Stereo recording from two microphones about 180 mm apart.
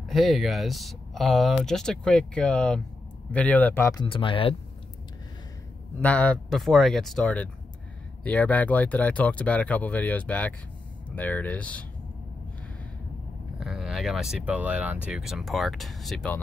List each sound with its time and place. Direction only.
0.1 s speech: centre (ahead or behind)
4.0 s speech: 30° left (ahead or behind)
5.9 s speech: 10° left (ahead or behind)
13.6 s speech: centre (ahead or behind)